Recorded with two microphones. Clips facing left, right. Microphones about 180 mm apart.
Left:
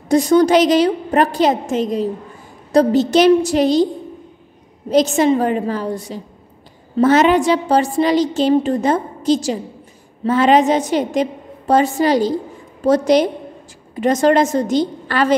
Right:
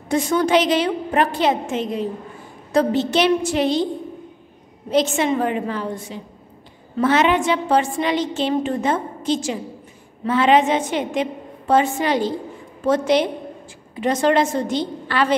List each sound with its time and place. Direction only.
0.1 s a woman's voice: 40° left (ahead or behind)
4.9 s a woman's voice: 40° left (ahead or behind)